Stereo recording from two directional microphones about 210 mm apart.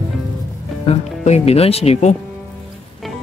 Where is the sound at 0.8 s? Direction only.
30° left (ahead or behind).